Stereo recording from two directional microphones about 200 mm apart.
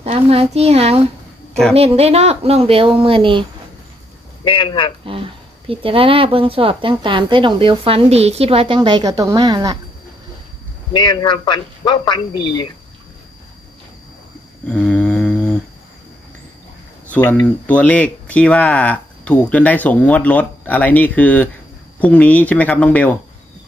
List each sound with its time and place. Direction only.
0.0 s a child's voice: 30° right (ahead or behind)
4.5 s a man's voice: 25° left (ahead or behind)
5.0 s speech: 25° right (ahead or behind)
10.9 s a man's voice: 20° left (ahead or behind)
14.7 s a sound: 5° left (ahead or behind)
17.1 s speech: 10° left (ahead or behind)